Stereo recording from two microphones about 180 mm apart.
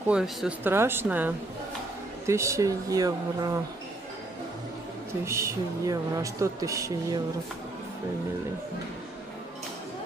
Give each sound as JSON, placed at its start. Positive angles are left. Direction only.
{"t": 0.1, "sound": "speech", "side_deg": -5}
{"t": 5.2, "sound": "speech", "side_deg": -15}